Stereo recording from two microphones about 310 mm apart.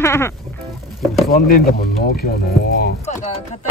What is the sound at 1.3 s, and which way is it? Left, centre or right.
Speech, left.